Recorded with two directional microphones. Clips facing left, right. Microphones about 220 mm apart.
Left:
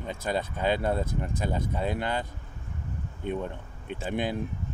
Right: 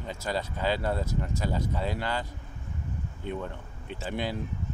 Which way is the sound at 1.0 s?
55° left (ahead or behind).